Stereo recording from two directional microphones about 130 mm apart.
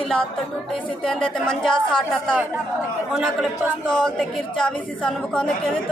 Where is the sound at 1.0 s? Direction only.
5° left (ahead or behind).